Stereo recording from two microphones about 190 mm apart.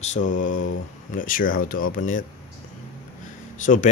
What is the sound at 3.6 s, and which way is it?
Speech, 40° left (ahead or behind).